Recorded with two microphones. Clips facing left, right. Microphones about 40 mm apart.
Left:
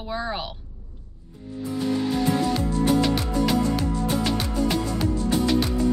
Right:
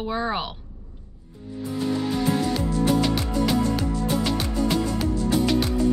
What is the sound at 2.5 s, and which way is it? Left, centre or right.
Music, centre.